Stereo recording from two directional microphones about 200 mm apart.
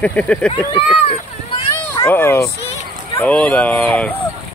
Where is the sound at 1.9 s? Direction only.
15° left (ahead or behind).